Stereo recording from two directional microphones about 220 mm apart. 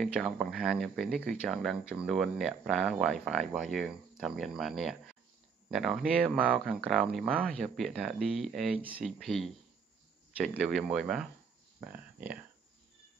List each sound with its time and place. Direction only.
0.0 s speech: 5° right (ahead or behind)